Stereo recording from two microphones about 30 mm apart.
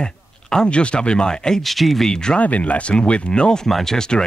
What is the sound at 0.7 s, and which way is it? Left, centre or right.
Speech, left.